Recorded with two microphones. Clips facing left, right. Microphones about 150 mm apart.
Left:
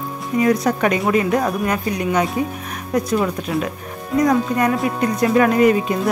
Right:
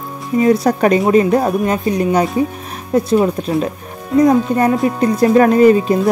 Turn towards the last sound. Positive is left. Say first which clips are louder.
# right 5 dB
turn(degrees=-35)  # may be behind; listen again after turning